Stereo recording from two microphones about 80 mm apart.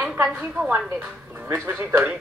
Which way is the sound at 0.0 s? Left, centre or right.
Centre.